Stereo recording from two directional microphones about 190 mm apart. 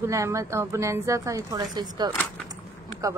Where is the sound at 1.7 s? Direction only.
20° right (ahead or behind).